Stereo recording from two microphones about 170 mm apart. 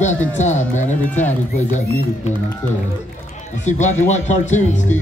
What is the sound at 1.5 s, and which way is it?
Speech, 45° left (ahead or behind).